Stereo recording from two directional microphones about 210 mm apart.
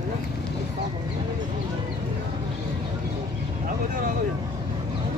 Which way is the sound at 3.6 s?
40° right (ahead or behind).